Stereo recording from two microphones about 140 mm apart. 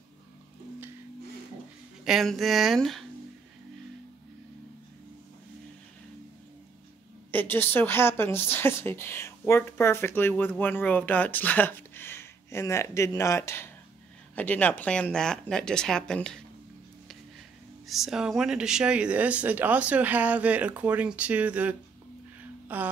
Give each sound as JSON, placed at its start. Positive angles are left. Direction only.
{"t": 2.0, "sound": "speech", "side_deg": 0}
{"t": 7.2, "sound": "speech", "side_deg": 15}
{"t": 17.8, "sound": "speech", "side_deg": 0}
{"t": 22.7, "sound": "a sound", "side_deg": -10}